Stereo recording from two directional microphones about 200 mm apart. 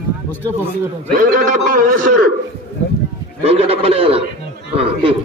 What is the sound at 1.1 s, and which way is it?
Speech, 40° right (ahead or behind).